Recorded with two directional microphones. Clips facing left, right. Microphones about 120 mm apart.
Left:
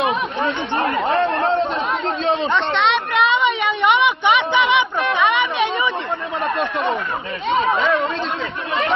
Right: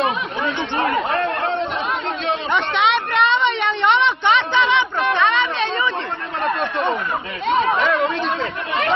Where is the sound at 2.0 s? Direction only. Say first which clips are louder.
Left 3 dB; 30° left (ahead or behind).